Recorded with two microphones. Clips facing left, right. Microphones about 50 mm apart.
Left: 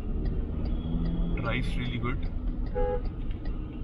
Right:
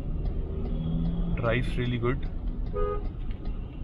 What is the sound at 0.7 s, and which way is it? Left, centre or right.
Vehicle, left.